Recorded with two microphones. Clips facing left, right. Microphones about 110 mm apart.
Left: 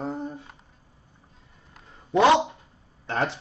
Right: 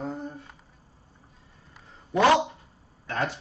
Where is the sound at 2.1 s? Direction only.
25° left (ahead or behind).